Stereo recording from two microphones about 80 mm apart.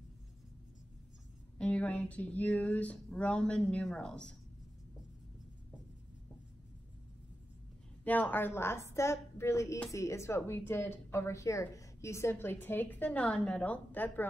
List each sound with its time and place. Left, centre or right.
1.6 s speech: centre
8.0 s a woman's voice: centre